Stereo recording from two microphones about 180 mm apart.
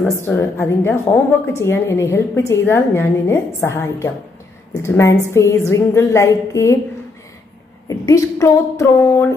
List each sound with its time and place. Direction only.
0.2 s a woman's voice: 10° left (ahead or behind)
7.9 s a woman's voice: 20° left (ahead or behind)